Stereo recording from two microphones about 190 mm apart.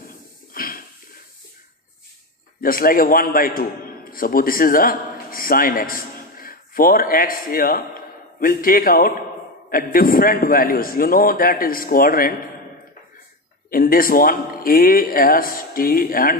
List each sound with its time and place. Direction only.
0.5 s a sound: 50° left (ahead or behind)
2.6 s a man's voice: 50° left (ahead or behind)
13.7 s a man's voice: 50° left (ahead or behind)